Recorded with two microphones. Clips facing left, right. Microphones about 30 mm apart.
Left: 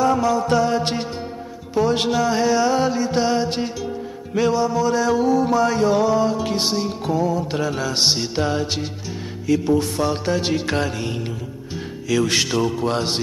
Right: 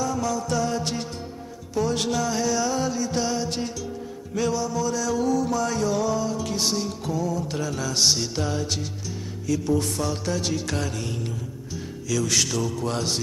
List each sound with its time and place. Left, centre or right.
0.2 s a man's voice: left
1.8 s music: left
12.1 s a man's voice: left